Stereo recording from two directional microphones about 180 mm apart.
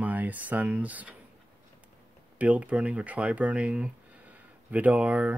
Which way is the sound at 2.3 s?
10° right (ahead or behind).